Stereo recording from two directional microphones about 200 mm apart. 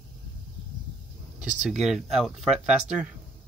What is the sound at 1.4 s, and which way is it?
Speech, 5° right (ahead or behind).